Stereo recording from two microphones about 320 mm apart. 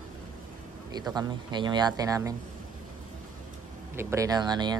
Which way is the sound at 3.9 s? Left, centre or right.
Centre.